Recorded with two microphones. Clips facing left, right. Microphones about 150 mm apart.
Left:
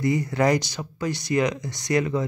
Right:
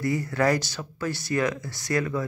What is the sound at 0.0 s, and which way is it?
Speech, 15° left (ahead or behind).